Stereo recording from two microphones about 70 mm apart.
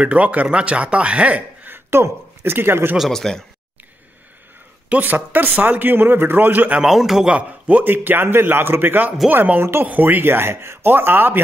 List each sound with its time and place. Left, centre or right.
0.0 s a man's voice: centre
1.7 s speech: right
3.1 s speech: centre
4.8 s a man's voice: right
6.8 s a man's voice: centre
7.3 s a man's voice: centre